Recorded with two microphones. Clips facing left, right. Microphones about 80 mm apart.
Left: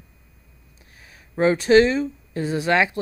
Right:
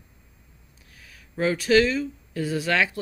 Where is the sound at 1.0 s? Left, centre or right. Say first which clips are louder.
Left 5 dB; left.